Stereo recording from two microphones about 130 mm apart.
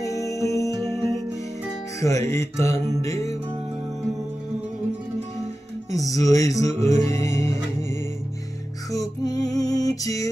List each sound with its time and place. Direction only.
0.0 s music: 25° left (ahead or behind)
0.7 s music: 25° right (ahead or behind)
2.0 s music: 25° left (ahead or behind)
5.9 s music: 25° left (ahead or behind)
8.9 s music: 30° left (ahead or behind)